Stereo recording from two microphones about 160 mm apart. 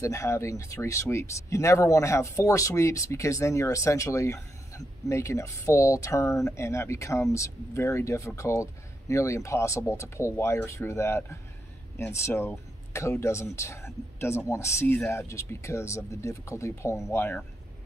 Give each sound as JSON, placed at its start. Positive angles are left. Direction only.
{"t": 0.0, "sound": "speech", "side_deg": 20}